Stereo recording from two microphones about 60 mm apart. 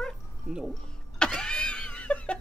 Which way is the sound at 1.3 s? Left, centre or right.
Centre.